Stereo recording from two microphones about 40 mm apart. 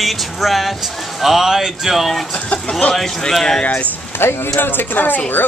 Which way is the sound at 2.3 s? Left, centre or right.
Left.